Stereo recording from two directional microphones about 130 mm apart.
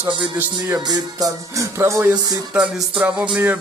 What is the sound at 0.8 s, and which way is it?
Music, 30° right (ahead or behind).